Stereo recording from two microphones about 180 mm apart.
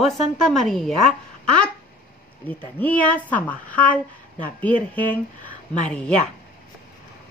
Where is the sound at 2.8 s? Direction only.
10° left (ahead or behind).